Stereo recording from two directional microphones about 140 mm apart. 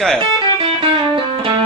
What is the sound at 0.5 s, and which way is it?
Music, 40° right (ahead or behind).